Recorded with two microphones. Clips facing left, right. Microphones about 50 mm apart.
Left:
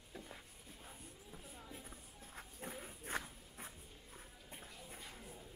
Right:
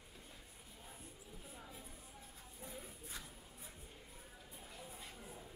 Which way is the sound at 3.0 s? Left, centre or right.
Left.